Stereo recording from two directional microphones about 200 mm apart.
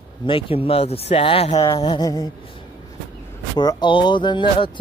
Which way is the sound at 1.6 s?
20° left (ahead or behind).